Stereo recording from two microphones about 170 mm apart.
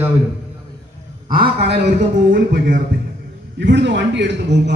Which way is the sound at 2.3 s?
55° right (ahead or behind).